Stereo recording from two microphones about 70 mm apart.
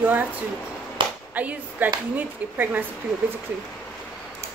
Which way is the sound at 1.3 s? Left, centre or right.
Right.